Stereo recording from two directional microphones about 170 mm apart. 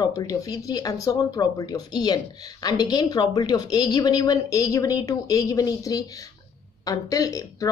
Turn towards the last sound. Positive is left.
turn(degrees=20)  # may be behind; listen again after turning